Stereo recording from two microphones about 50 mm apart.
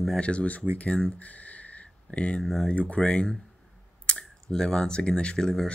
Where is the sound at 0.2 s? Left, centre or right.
Left.